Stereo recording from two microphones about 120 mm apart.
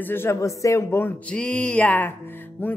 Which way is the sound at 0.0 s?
20° left (ahead or behind).